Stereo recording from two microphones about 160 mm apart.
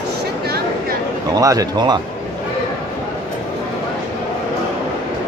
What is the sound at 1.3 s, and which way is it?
Speech, 20° right (ahead or behind).